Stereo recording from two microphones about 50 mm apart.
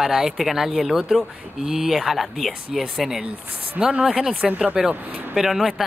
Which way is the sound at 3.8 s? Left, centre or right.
Centre.